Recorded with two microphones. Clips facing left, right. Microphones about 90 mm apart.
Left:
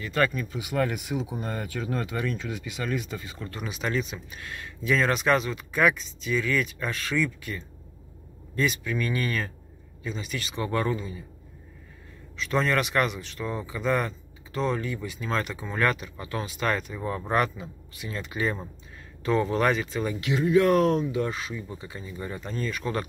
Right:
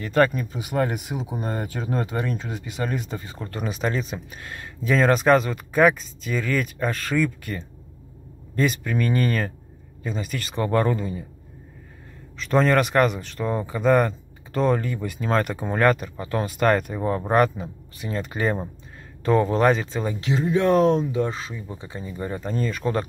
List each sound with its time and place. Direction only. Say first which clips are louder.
0.0 s speech: right 6 dB; 35° right (ahead or behind)
12.4 s speech: right 6 dB; 40° right (ahead or behind)